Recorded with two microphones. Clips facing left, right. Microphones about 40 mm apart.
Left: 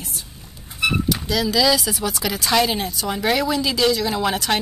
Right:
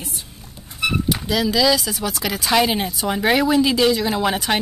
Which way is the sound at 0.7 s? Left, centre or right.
Centre.